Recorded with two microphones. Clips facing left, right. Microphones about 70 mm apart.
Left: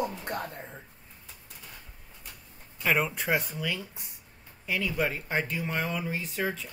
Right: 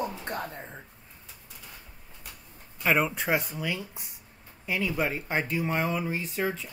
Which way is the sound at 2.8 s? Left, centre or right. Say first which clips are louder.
Right 2 dB; centre.